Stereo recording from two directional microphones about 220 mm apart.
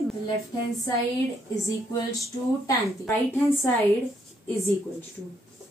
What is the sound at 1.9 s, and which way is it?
Speech, 15° left (ahead or behind).